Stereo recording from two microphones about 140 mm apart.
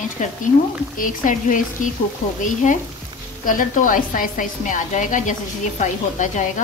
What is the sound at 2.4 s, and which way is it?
Sizzle, 65° left (ahead or behind).